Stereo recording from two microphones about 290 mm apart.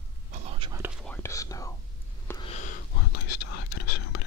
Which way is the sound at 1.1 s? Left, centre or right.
Centre.